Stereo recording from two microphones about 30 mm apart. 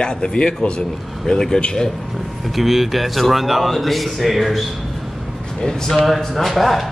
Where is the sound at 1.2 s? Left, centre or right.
Centre.